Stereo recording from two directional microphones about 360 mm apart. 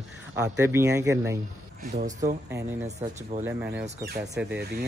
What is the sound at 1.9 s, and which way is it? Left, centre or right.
Speech, centre.